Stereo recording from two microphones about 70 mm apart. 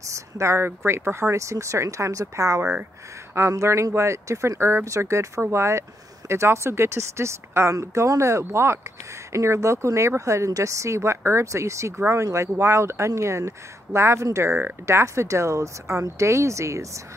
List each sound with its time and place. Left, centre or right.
0.0 s speech: right